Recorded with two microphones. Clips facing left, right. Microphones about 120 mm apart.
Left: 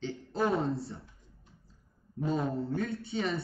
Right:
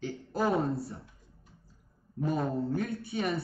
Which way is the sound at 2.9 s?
25° left (ahead or behind).